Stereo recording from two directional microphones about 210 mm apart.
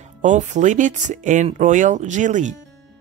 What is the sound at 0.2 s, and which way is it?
Speech, 35° right (ahead or behind).